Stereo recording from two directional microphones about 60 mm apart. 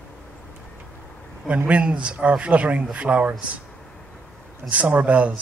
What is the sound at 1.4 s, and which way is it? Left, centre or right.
Speech, right.